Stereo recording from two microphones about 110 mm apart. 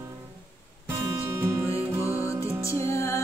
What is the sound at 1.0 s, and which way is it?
Music, 25° right (ahead or behind).